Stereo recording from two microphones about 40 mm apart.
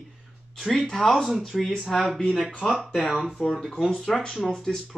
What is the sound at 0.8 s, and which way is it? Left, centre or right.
Speech, centre.